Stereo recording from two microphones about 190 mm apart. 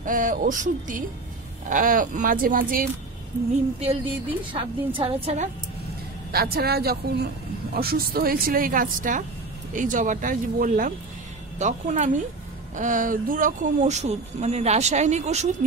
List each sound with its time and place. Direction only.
0.0 s speech: 45° right (ahead or behind)
3.8 s a woman's voice: 30° right (ahead or behind)
6.3 s speech: 55° right (ahead or behind); by 15.5 s 35° right (ahead or behind)